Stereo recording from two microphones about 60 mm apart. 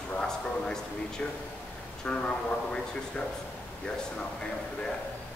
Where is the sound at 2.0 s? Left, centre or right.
Centre.